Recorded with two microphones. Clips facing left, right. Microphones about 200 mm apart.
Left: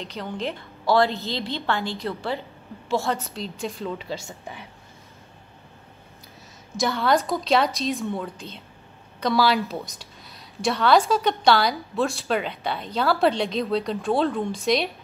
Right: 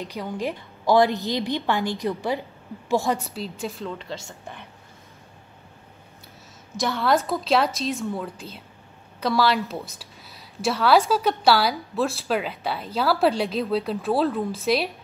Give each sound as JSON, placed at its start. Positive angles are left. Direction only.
{"t": 0.0, "sound": "a woman's voice", "side_deg": -10}
{"t": 6.8, "sound": "a woman's voice", "side_deg": 0}